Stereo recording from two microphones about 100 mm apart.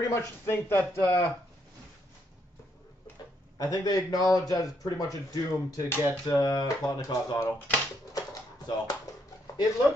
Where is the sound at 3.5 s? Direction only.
45° left (ahead or behind).